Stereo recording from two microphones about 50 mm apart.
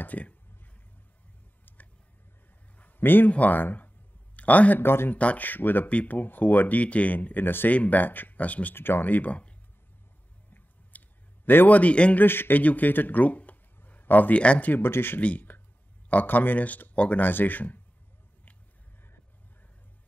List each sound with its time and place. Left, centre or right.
0.0 s speech: left
1.7 s a sound: left
3.0 s speech: left
3.3 s speech: left
4.7 s speech: left
5.1 s speech: left
8.7 s speech: left
10.9 s clicking: left
11.4 s a man's voice: left
12.2 s speech: left
15.1 s speech: left
17.2 s speech: left